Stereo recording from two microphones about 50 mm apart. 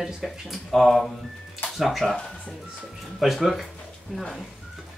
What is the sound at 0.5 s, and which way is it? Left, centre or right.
Speech, centre.